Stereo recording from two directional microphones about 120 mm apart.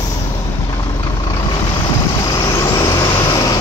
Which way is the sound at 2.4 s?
30° left (ahead or behind).